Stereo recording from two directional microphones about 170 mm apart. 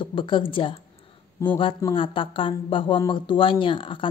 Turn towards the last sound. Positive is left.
turn(degrees=30)  # may be behind; listen again after turning